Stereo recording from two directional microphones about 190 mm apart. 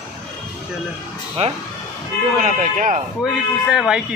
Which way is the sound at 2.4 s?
40° right (ahead or behind).